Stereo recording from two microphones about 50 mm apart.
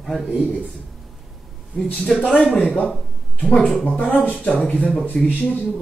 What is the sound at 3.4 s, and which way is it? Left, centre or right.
Speech, centre.